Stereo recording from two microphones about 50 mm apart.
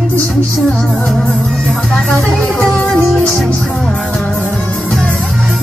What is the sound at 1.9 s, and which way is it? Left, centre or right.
Music, centre.